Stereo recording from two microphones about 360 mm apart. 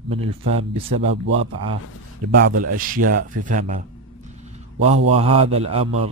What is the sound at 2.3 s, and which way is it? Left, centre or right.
Speech, right.